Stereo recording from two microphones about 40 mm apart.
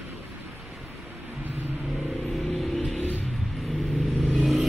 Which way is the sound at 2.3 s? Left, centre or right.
Centre.